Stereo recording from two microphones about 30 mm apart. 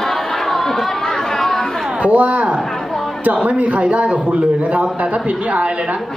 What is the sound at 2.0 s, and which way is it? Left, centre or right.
A man's voice, right.